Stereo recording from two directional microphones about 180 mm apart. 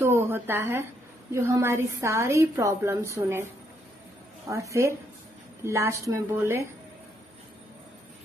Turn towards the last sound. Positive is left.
turn(degrees=-15)  # may be behind; listen again after turning